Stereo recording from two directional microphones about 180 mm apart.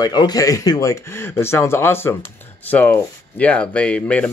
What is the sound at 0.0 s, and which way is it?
Speech, 20° left (ahead or behind).